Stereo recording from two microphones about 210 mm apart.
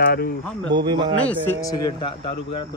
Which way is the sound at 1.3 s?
15° left (ahead or behind).